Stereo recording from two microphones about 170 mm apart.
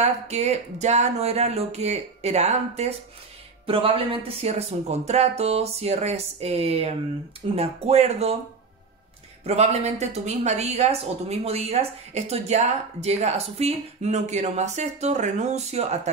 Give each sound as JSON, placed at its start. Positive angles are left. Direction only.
{"t": 0.0, "sound": "a woman's voice", "side_deg": -40}
{"t": 9.4, "sound": "a woman's voice", "side_deg": -40}